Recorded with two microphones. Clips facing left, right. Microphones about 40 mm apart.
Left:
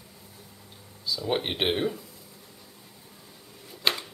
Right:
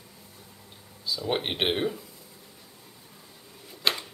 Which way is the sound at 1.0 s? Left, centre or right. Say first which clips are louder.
Left 1 dB; centre.